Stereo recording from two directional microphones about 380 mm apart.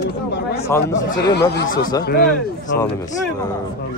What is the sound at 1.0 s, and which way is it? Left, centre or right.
Speech, left.